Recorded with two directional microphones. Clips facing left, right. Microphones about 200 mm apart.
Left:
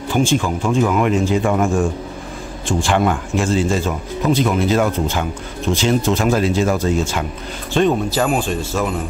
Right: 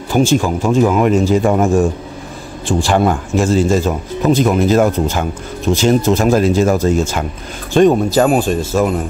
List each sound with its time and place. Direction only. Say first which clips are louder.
0.1 s a man's voice: right 4 dB; 40° right (ahead or behind)